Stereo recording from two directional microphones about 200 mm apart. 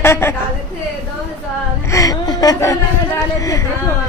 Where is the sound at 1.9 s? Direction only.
20° left (ahead or behind).